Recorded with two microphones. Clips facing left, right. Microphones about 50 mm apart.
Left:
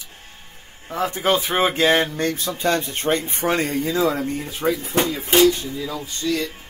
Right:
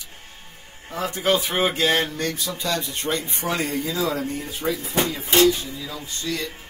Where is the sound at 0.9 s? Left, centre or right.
Left.